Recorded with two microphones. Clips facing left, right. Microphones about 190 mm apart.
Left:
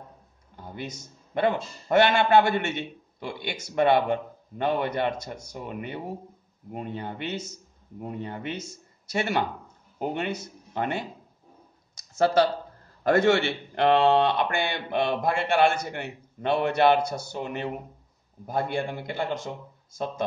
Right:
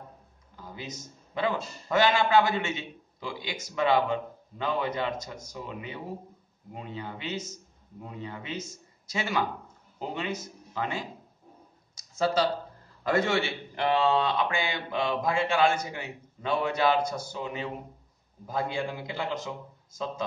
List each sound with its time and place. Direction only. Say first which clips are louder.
0.7 s a man's voice: left 4 dB; 65° left (ahead or behind)
8.0 s a man's voice: left 6 dB; 55° left (ahead or behind)
12.0 s a sound: left 5 dB; 70° left (ahead or behind)
13.0 s a man's voice: left 5 dB; 60° left (ahead or behind)